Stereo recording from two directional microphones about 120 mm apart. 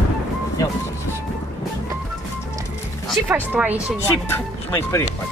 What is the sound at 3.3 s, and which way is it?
Speech, 15° right (ahead or behind).